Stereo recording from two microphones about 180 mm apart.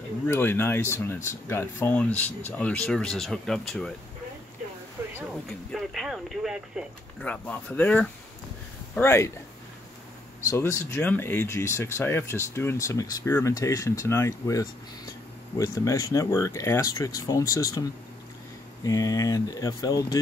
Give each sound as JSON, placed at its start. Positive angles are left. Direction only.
{"t": 0.3, "sound": "speech", "side_deg": 10}
{"t": 5.0, "sound": "a sound", "side_deg": -15}
{"t": 5.7, "sound": "speech", "side_deg": 0}
{"t": 7.2, "sound": "speech", "side_deg": 5}
{"t": 10.5, "sound": "speech", "side_deg": 15}
{"t": 18.9, "sound": "speech", "side_deg": 20}